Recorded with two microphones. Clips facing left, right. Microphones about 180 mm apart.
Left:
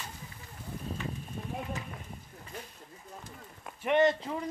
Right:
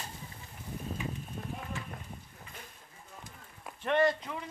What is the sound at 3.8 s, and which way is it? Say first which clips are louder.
Speech: left 2 dB; 20° left (ahead or behind).